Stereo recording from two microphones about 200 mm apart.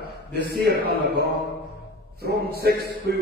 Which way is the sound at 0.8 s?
50° right (ahead or behind).